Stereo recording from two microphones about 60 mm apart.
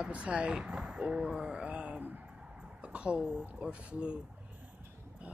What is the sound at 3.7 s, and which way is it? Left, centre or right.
Speech, centre.